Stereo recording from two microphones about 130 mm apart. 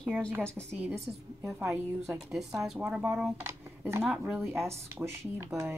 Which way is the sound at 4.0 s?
5° right (ahead or behind).